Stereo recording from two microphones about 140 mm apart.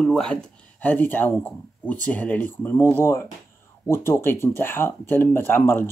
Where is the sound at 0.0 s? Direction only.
Centre (ahead or behind).